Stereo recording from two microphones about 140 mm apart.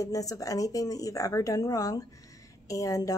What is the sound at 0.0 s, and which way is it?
Speech, 25° left (ahead or behind).